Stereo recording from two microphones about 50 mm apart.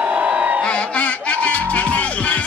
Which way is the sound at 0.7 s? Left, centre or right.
Left.